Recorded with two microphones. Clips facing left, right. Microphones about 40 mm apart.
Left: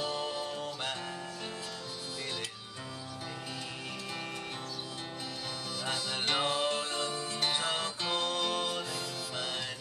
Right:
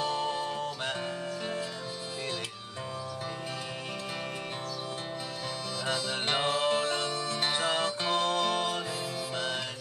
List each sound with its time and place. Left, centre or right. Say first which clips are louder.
0.0 s music: right 4 dB; centre
6.0 s music: even; centre
7.1 s music: right 4 dB; right
7.3 s music: right 3 dB; centre